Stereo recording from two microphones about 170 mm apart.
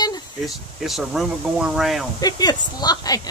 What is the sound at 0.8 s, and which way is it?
Speech, centre (ahead or behind).